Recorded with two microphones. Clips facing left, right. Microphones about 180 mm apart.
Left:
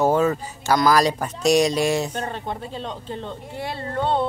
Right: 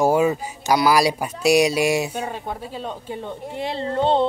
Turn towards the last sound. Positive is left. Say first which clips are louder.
# right 4 dB
turn(degrees=-25)  # may be behind; listen again after turning